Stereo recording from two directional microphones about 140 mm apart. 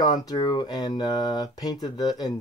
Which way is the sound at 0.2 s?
25° left (ahead or behind).